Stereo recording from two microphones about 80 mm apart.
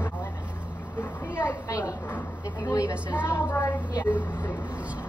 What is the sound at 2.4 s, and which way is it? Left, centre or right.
Speech, left.